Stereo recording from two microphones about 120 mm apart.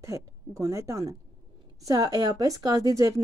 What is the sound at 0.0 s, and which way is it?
Speech, 25° right (ahead or behind).